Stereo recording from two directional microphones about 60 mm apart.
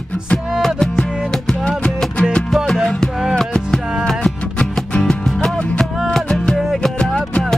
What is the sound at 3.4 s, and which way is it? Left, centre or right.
Music, centre.